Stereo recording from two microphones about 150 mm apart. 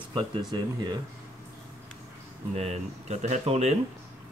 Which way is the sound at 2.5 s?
45° right (ahead or behind).